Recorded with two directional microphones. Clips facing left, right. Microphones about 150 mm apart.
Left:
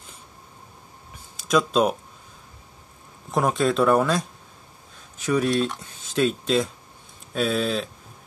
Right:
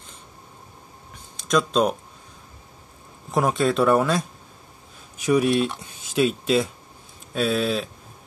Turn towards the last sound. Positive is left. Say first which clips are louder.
# right 1 dB
turn(degrees=-5)  # may be behind; listen again after turning